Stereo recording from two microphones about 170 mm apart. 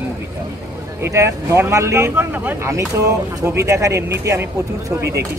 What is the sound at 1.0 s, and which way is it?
Speech, 15° right (ahead or behind).